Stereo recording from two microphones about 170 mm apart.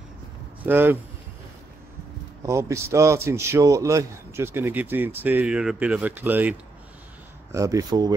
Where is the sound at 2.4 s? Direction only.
15° right (ahead or behind).